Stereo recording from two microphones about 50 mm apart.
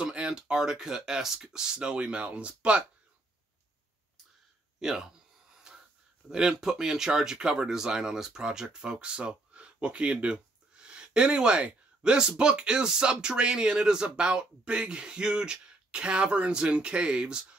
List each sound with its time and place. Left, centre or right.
0.0 s speech: centre
4.7 s speech: centre
5.7 s a sound: centre
6.2 s speech: centre